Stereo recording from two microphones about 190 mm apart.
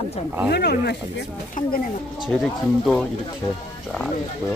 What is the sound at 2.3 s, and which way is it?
Speech, centre (ahead or behind).